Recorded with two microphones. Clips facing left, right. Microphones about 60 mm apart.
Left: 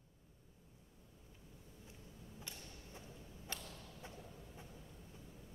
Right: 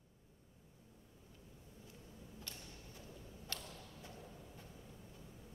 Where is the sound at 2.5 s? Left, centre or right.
Centre.